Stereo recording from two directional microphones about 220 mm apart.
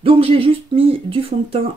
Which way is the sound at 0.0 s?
25° right (ahead or behind).